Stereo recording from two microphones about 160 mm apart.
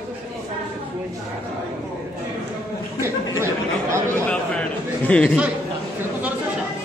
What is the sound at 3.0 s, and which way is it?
Chatter, 15° right (ahead or behind).